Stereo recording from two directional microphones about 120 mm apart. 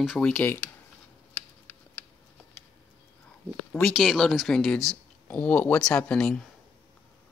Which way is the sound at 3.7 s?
5° left (ahead or behind).